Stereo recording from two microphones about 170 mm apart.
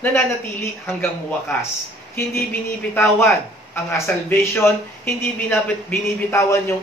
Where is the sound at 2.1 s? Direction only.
15° left (ahead or behind).